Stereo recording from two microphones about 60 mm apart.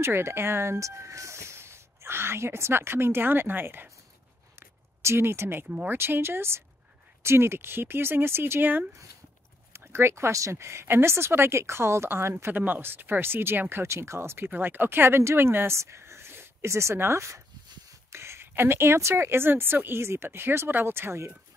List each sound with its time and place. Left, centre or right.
0.0 s speech: right
4.6 s a sound: right
5.7 s speech: right
5.9 s speech: right
9.7 s speech: right
12.5 s speech: right